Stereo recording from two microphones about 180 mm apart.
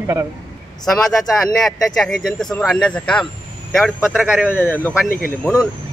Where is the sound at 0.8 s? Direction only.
Centre (ahead or behind).